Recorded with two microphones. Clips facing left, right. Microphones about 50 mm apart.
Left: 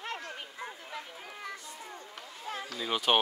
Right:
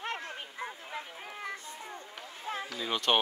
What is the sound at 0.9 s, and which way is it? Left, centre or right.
Children playing, right.